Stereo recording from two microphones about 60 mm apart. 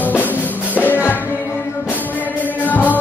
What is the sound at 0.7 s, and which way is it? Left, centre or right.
Music, left.